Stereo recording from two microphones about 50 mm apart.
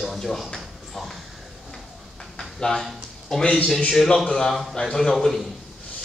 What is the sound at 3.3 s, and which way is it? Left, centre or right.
A man's voice, centre.